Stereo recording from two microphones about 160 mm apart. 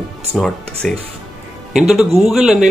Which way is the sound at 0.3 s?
5° left (ahead or behind).